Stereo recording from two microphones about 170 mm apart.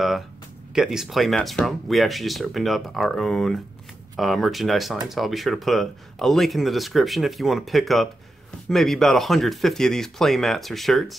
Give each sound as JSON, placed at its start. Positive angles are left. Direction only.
{"t": 0.7, "sound": "speech", "side_deg": 0}